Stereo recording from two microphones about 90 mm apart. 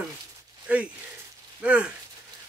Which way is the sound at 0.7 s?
15° right (ahead or behind).